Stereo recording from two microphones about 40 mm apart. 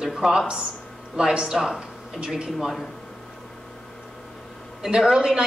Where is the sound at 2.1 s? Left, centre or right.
Right.